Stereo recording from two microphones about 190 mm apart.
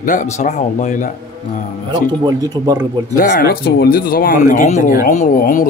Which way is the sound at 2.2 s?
20° right (ahead or behind).